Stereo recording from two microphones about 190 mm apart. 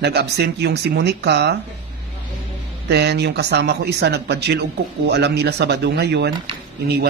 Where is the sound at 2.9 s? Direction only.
60° right (ahead or behind).